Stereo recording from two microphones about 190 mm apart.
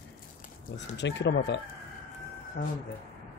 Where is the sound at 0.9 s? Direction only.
70° left (ahead or behind).